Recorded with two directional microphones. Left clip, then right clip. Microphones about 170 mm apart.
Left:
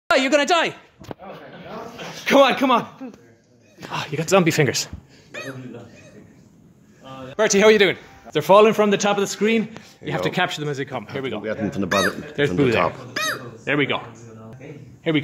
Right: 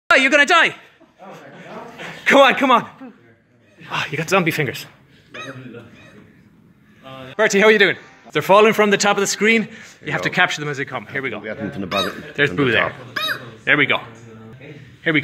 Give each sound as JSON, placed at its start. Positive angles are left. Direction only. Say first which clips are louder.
{"t": 0.1, "sound": "a man's voice", "louder": "right 4 dB", "side_deg": 5}
{"t": 1.6, "sound": "a sound", "louder": "right 1 dB", "side_deg": 0}
{"t": 3.9, "sound": "a man's voice", "louder": "right 1 dB", "side_deg": 10}
{"t": 4.4, "sound": "speech", "louder": "left 4 dB", "side_deg": 35}
{"t": 7.3, "sound": "a man's voice", "louder": "right 2 dB", "side_deg": 0}
{"t": 10.0, "sound": "a man's voice", "louder": "right 4 dB", "side_deg": 10}
{"t": 11.4, "sound": "speech", "louder": "left 2 dB", "side_deg": 65}
{"t": 11.9, "sound": "a man's voice", "louder": "left 1 dB", "side_deg": 15}
{"t": 13.3, "sound": "a sound", "louder": "right 10 dB", "side_deg": 5}
{"t": 15.0, "sound": "a man's voice", "louder": "right 4 dB", "side_deg": 10}